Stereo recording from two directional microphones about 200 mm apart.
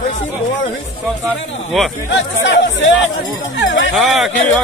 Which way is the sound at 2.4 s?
65° left (ahead or behind).